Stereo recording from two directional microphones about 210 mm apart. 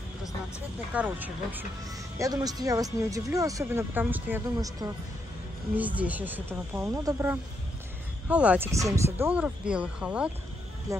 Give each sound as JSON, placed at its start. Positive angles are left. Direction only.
{"t": 0.9, "sound": "speech", "side_deg": -10}